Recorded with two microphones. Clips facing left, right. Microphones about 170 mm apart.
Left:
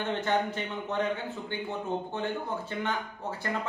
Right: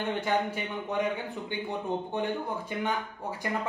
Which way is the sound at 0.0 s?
10° right (ahead or behind).